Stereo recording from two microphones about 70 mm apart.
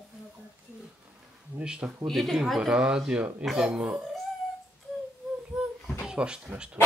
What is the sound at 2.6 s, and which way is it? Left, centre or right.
Speech, centre.